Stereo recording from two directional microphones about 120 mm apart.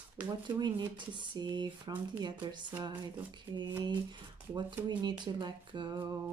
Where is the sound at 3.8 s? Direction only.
40° right (ahead or behind).